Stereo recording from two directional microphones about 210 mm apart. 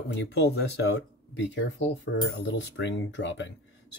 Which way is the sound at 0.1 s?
55° left (ahead or behind).